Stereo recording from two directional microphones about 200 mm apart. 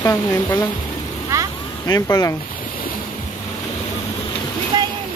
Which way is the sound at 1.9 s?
15° left (ahead or behind).